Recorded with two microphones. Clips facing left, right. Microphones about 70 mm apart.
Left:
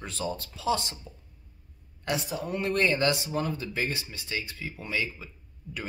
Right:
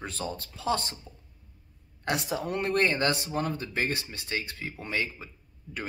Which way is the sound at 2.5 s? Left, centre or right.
Right.